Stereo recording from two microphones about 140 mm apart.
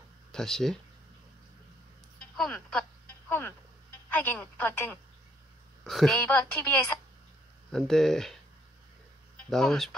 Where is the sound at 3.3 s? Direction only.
15° left (ahead or behind).